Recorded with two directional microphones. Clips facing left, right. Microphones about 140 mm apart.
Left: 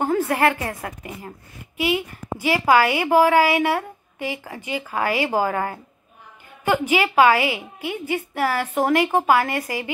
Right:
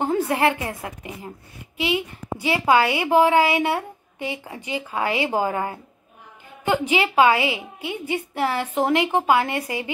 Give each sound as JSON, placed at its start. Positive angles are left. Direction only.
{"t": 0.0, "sound": "a woman's voice", "side_deg": -20}
{"t": 6.9, "sound": "a woman's voice", "side_deg": -25}